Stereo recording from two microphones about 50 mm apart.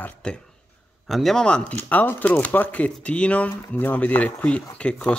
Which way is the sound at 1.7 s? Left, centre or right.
Left.